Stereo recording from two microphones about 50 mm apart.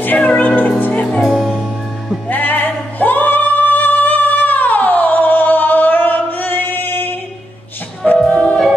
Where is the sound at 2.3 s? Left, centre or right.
Left.